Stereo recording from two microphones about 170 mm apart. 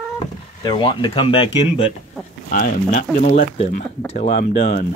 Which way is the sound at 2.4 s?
60° left (ahead or behind).